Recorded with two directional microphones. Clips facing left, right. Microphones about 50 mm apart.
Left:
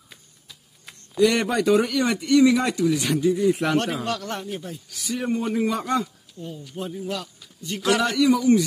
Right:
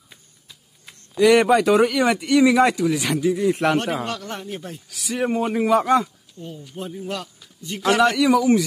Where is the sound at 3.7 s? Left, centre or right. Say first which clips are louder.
Even; right.